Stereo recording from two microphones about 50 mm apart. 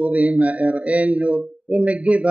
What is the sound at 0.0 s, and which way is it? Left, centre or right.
Speech, right.